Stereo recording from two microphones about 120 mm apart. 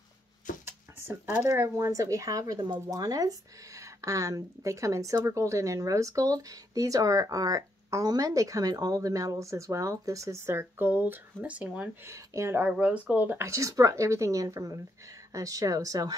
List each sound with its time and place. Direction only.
0.5 s a sound: 90° left
0.9 s speech: 20° right (ahead or behind)
12.1 s speech: 20° right (ahead or behind)
13.5 s speech: 25° right (ahead or behind)